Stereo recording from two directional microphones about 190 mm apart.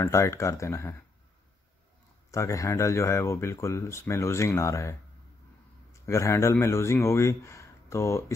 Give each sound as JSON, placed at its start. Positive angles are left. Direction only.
{"t": 0.0, "sound": "speech", "side_deg": 15}
{"t": 2.3, "sound": "speech", "side_deg": 15}
{"t": 6.0, "sound": "speech", "side_deg": 15}